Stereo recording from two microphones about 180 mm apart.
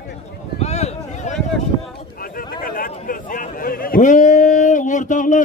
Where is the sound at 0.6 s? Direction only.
35° left (ahead or behind).